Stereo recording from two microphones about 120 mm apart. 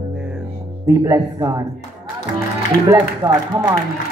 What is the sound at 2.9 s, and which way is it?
Speech, 25° right (ahead or behind).